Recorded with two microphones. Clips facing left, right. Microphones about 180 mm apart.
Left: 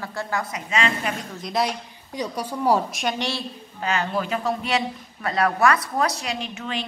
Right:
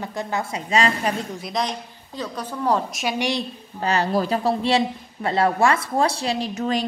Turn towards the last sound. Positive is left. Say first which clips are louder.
# right 6 dB
turn(degrees=-40)  # may be behind; listen again after turning